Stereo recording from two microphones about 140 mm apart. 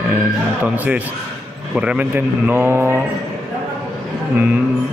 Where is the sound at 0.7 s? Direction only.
10° right (ahead or behind).